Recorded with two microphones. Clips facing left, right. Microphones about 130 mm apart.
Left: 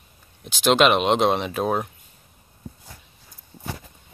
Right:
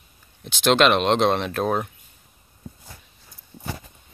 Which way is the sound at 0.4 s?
5° left (ahead or behind).